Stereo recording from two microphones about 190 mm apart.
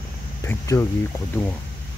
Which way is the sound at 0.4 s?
15° left (ahead or behind).